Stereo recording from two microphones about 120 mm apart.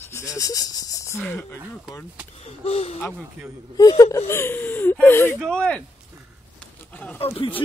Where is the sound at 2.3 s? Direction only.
55° left (ahead or behind).